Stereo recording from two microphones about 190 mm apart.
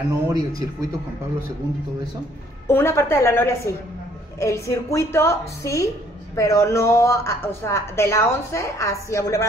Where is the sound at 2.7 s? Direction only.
15° left (ahead or behind).